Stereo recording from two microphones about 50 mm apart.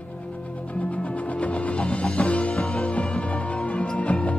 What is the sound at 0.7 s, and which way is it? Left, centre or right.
Music, left.